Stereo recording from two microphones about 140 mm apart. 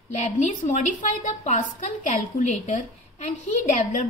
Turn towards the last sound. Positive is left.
turn(degrees=60)  # may be behind; listen again after turning